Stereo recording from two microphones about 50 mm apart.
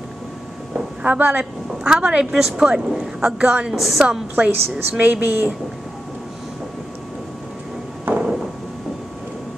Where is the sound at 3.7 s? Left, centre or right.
Centre.